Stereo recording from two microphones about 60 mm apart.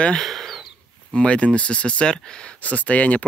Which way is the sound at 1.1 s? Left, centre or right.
Centre.